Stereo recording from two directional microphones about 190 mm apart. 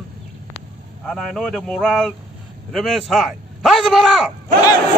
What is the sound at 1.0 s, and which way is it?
A man's voice, centre (ahead or behind).